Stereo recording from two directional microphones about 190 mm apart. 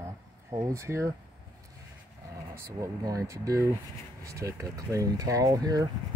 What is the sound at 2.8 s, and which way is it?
Speech, 15° right (ahead or behind).